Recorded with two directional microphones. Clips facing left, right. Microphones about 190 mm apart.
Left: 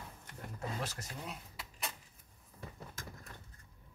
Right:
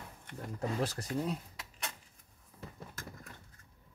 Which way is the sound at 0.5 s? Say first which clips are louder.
Right 7 dB; 35° right (ahead or behind).